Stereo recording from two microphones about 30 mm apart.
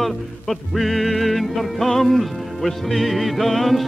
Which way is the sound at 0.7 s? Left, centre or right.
Centre.